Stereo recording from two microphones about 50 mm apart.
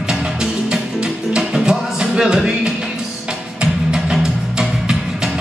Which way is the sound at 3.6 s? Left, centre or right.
Centre.